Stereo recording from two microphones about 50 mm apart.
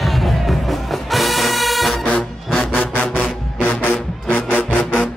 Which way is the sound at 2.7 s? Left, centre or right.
Left.